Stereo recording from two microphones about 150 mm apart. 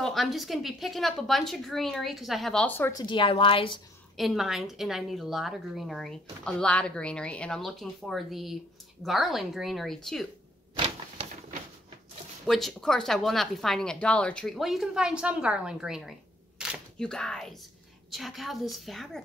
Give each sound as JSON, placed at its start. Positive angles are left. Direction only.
{"t": 0.0, "sound": "speech", "side_deg": 0}
{"t": 2.9, "sound": "a woman's voice", "side_deg": 30}
{"t": 4.2, "sound": "speech", "side_deg": 0}
{"t": 12.4, "sound": "speech", "side_deg": 0}